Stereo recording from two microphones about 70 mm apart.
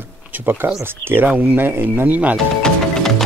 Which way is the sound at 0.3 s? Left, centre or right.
Right.